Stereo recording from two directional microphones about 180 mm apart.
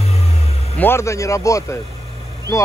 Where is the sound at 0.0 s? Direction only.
35° left (ahead or behind).